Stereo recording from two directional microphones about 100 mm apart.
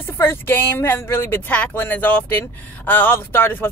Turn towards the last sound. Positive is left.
turn(degrees=20)  # may be behind; listen again after turning